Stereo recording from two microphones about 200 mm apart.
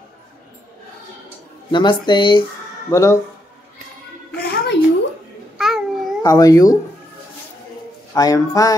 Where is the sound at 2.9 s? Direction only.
15° left (ahead or behind).